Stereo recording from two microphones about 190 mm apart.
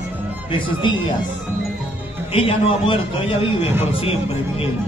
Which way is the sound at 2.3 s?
30° left (ahead or behind).